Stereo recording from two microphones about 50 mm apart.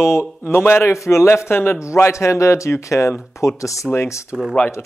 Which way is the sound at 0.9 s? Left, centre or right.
Left.